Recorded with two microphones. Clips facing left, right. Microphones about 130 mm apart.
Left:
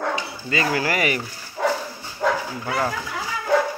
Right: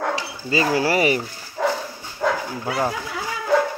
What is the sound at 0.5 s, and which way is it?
Speech, 30° right (ahead or behind).